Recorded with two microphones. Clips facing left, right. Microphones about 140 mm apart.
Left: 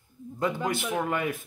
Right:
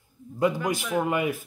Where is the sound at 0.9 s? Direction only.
10° right (ahead or behind).